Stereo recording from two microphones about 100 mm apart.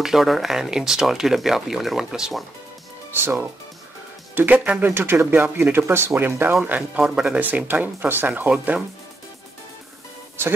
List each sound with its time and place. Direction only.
0.0 s speech: centre (ahead or behind)
3.2 s speech: 20° right (ahead or behind)
6.6 s speech: 10° right (ahead or behind)